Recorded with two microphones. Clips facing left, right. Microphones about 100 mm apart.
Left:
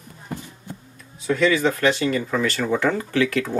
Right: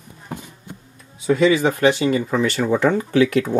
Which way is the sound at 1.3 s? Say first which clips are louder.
Right 3 dB; 15° right (ahead or behind).